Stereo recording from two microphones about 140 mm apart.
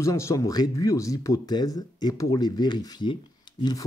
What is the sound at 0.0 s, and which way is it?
Speech, 20° left (ahead or behind).